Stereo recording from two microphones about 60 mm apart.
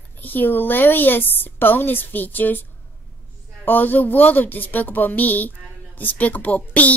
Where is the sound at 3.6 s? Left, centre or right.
Left.